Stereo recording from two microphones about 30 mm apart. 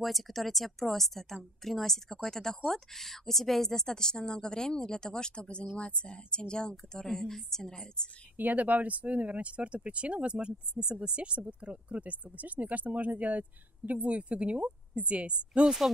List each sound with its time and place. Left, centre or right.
0.0 s a woman's voice: centre; by 7.0 s left
7.0 s a woman's voice: centre
8.4 s speech: right
14.0 s a woman's voice: right